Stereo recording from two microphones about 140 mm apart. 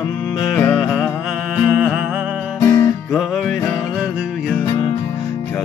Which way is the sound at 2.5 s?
15° left (ahead or behind).